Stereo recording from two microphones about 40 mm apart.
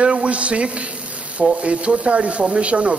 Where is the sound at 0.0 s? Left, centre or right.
Right.